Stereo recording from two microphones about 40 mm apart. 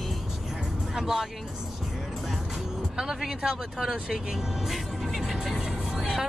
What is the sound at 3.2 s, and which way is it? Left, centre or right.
Speech, centre.